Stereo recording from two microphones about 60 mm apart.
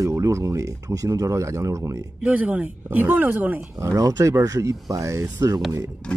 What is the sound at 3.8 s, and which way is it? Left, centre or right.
Speech, right.